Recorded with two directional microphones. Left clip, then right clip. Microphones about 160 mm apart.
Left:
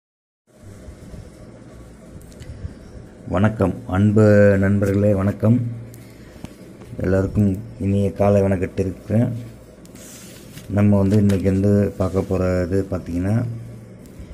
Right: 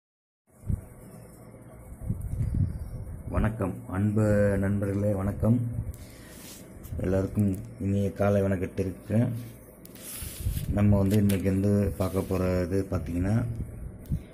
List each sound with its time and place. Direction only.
3.3 s a man's voice: 15° left (ahead or behind)
7.0 s speech: 5° left (ahead or behind)
10.7 s speech: 5° left (ahead or behind)